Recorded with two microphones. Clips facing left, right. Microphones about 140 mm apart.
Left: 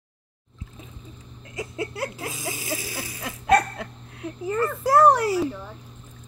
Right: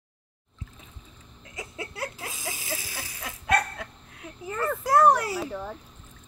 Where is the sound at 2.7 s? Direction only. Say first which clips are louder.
Left 5 dB; 10° left (ahead or behind).